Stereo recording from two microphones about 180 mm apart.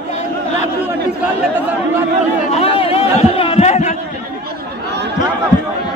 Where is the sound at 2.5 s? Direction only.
30° left (ahead or behind).